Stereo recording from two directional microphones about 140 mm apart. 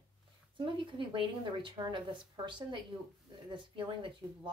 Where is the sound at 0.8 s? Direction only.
35° right (ahead or behind).